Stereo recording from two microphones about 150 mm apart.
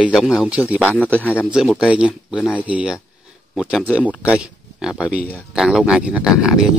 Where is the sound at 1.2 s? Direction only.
10° left (ahead or behind).